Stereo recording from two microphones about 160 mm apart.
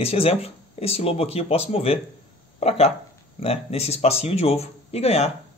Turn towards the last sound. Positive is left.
turn(degrees=40)  # may be behind; listen again after turning